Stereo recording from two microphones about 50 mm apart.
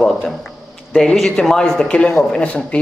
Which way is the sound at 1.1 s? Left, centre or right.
Centre.